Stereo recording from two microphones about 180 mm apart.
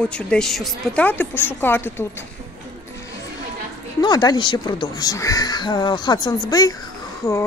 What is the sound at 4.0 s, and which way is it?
Speech, 20° left (ahead or behind).